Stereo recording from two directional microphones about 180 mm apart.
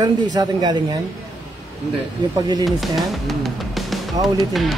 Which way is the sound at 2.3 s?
20° right (ahead or behind).